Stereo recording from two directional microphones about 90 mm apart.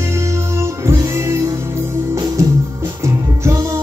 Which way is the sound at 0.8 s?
35° right (ahead or behind).